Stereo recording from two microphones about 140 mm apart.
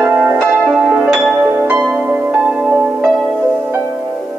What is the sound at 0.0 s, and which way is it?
Music, 15° right (ahead or behind).